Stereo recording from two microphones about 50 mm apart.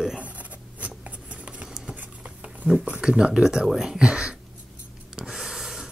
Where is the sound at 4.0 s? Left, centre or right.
Centre.